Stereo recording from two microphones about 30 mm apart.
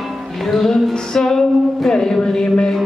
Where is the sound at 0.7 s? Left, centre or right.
Centre.